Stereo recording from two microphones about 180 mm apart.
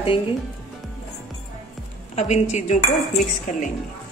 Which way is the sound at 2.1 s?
40° left (ahead or behind).